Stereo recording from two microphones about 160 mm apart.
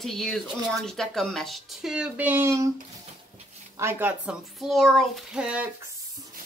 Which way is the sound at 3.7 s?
15° right (ahead or behind).